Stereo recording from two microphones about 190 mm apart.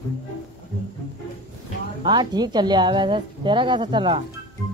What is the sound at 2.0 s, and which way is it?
Speech, 25° right (ahead or behind).